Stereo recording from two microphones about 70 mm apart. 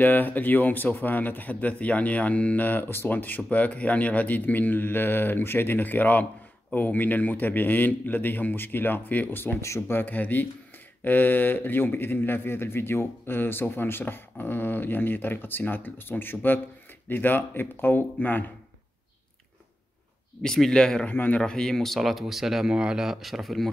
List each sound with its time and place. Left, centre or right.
0.0 s a man's voice: left
20.4 s speech: centre
21.1 s speech: left
21.4 s speech: centre